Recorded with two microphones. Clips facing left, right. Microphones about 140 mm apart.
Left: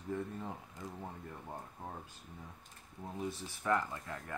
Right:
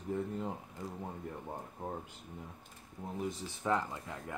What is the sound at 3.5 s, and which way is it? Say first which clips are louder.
Speech: even; 20° right (ahead or behind).